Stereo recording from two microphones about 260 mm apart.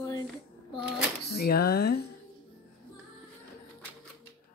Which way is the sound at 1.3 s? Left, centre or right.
Left.